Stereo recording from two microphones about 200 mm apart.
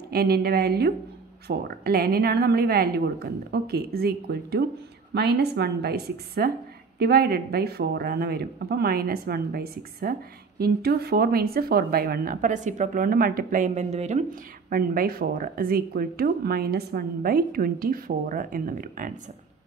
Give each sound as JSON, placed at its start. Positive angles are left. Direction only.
{"t": 0.1, "sound": "speech", "side_deg": -50}
{"t": 14.7, "sound": "speech", "side_deg": -45}